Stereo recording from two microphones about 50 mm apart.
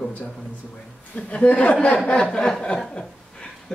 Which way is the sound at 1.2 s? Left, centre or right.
Left.